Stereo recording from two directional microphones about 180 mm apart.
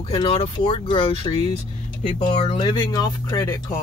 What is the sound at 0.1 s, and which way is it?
Speech, 30° left (ahead or behind).